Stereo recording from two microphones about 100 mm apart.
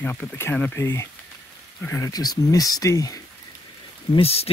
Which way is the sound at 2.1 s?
40° left (ahead or behind).